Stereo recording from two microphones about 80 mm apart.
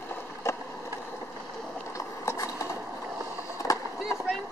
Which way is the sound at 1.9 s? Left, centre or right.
Left.